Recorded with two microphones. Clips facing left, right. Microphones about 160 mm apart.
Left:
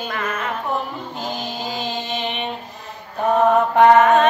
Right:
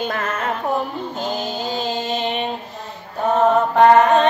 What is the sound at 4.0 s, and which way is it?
Music, 25° right (ahead or behind).